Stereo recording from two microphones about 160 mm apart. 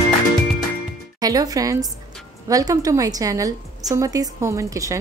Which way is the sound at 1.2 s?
25° right (ahead or behind).